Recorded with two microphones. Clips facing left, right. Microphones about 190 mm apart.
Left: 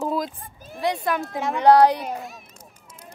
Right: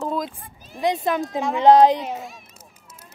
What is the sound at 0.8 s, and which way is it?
A child's voice, 20° right (ahead or behind).